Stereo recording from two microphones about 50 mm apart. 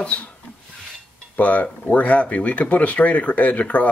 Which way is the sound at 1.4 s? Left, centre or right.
Left.